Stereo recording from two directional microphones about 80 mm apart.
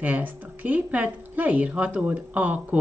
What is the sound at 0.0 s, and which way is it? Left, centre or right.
Speech, right.